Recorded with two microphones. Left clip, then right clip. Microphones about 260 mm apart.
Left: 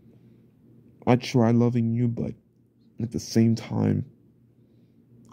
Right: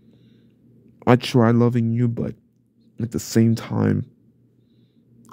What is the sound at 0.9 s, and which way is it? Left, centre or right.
Speech, centre.